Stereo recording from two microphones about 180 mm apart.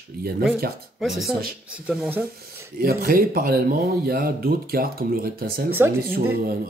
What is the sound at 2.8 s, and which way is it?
Speech, 55° right (ahead or behind).